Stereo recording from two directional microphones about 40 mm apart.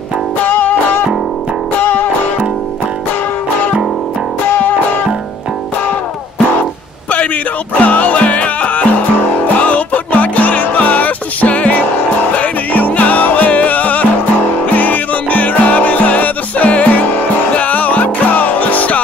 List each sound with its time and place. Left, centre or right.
0.5 s music: left
1.8 s music: left
7.8 s music: left